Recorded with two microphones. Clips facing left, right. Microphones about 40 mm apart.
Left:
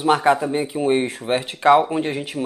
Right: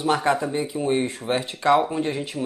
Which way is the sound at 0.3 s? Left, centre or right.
Left.